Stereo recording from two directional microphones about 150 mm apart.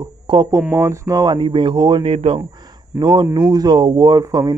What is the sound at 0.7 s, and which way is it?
Speech, 20° right (ahead or behind).